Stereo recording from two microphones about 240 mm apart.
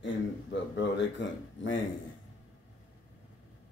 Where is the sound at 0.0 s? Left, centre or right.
Left.